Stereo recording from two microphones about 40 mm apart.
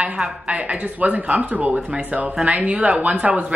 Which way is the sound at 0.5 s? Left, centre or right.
Right.